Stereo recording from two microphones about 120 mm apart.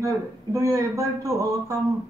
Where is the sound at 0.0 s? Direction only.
25° right (ahead or behind).